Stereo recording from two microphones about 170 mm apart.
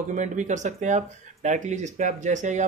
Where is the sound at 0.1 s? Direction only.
45° right (ahead or behind).